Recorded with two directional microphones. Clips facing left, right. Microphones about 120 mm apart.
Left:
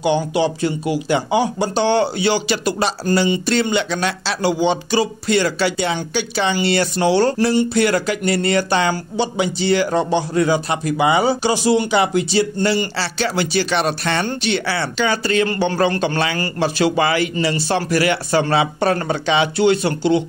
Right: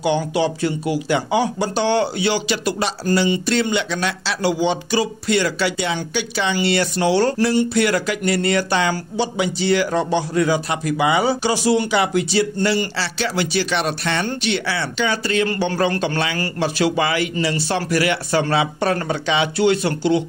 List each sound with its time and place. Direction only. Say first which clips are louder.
0.0 s a man's voice: left 2 dB; 20° left (ahead or behind)